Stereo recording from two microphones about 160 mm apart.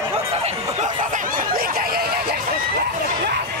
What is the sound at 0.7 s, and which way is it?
Speech, 50° right (ahead or behind).